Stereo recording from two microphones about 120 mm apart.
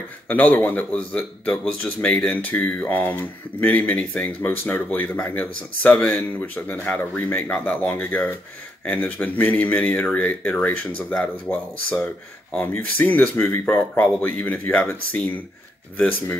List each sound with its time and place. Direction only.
0.6 s speech: 15° left (ahead or behind)